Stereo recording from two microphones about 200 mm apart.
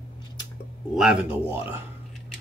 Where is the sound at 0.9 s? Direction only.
5° right (ahead or behind).